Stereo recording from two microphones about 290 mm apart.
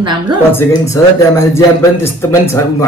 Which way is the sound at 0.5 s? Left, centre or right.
Centre.